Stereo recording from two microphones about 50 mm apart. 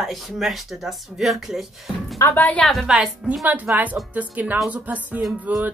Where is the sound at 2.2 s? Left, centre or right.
Left.